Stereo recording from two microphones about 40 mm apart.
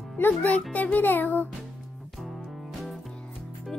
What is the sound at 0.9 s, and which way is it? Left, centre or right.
Music, left.